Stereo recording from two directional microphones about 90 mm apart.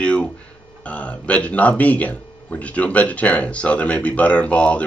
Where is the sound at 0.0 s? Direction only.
10° left (ahead or behind).